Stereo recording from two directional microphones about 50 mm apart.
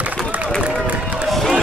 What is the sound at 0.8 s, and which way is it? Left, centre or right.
Run, right.